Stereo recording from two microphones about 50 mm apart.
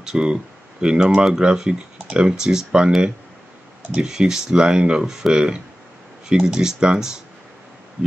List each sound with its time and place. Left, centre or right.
0.0 s speech: centre
3.9 s speech: centre